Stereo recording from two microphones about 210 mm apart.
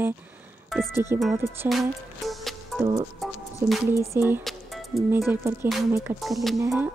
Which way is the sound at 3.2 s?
Centre (ahead or behind).